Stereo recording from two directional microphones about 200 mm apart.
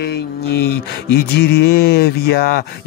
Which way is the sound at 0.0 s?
55° left (ahead or behind).